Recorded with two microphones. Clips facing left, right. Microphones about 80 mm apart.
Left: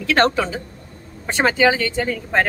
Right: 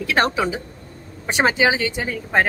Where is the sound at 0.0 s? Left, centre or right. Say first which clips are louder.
Left 2 dB; centre.